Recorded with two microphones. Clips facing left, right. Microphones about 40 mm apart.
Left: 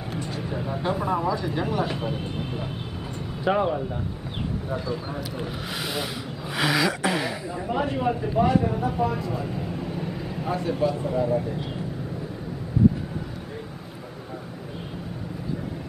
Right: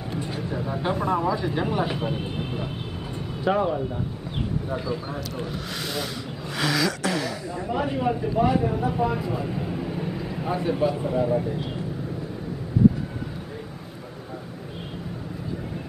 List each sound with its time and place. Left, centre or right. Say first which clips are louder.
0.4 s speech: right 1 dB; centre
3.4 s speech: even; centre
4.6 s speech: right 1 dB; centre
6.5 s a sound: left 1 dB; centre
7.6 s speech: even; centre